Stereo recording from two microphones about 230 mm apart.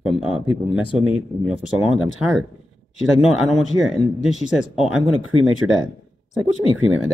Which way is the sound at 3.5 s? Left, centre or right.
Centre.